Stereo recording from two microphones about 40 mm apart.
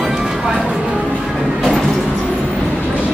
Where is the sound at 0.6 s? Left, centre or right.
Centre.